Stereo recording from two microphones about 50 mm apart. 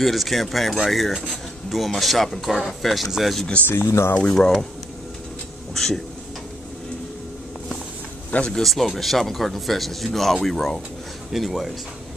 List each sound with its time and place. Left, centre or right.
0.0 s speech: centre
3.6 s speech: left
4.3 s speech: centre
8.3 s speech: left
8.5 s speech: centre